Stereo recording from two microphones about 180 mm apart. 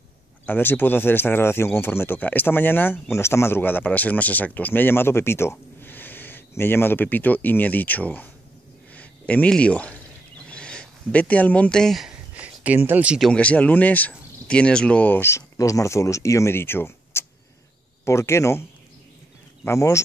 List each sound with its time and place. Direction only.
0.5 s speech: 10° left (ahead or behind)
10.4 s a sound: 5° left (ahead or behind)
13.3 s speech: 5° left (ahead or behind)